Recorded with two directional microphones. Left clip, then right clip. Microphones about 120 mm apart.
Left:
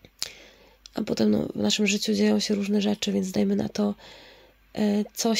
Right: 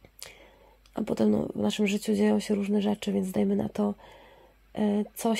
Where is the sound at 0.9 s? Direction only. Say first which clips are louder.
Left 2 dB; 25° left (ahead or behind).